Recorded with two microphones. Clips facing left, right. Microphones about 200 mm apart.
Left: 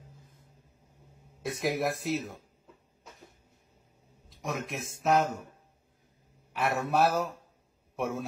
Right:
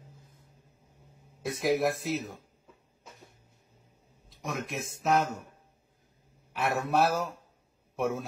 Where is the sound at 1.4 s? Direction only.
Centre (ahead or behind).